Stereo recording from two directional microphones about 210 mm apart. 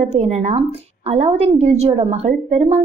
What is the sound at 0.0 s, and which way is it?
A woman's voice, 30° right (ahead or behind).